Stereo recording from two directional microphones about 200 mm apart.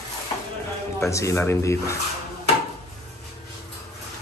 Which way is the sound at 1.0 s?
15° left (ahead or behind).